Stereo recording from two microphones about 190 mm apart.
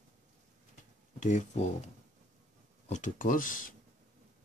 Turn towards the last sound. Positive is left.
turn(degrees=45)  # may be behind; listen again after turning